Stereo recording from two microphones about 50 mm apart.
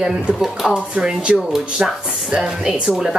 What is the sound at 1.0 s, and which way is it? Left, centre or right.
Speech, centre.